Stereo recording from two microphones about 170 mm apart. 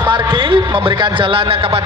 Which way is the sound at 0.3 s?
30° right (ahead or behind).